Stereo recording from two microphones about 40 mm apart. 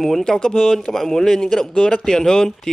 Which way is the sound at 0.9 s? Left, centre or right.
Centre.